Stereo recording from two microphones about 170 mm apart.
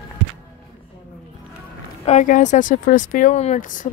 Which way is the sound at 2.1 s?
45° left (ahead or behind).